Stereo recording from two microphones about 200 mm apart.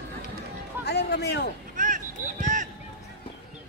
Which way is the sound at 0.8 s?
55° left (ahead or behind).